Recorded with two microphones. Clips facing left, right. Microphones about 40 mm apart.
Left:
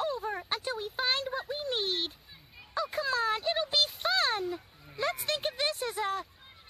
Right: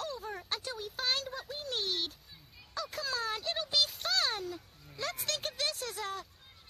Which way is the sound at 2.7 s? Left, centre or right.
Left.